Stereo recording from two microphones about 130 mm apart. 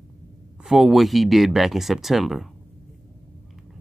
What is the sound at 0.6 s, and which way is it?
Speech, centre (ahead or behind).